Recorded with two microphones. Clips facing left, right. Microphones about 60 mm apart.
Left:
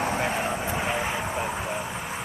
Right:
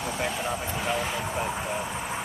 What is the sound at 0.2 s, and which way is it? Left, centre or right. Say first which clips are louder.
Vehicle: left 3 dB; left.